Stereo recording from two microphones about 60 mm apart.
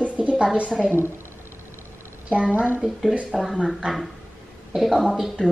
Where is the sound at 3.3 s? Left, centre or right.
Centre.